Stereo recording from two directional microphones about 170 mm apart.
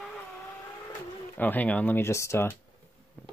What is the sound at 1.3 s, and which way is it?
Speech, 10° left (ahead or behind).